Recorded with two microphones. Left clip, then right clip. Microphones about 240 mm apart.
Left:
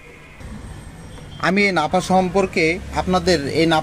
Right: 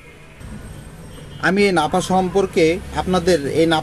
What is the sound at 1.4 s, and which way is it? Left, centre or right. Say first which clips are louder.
Speech: right 1 dB; left.